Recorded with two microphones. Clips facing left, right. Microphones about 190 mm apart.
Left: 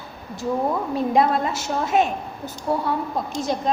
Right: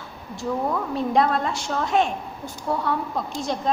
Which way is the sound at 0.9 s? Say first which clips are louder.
Left 2 dB; 5° left (ahead or behind).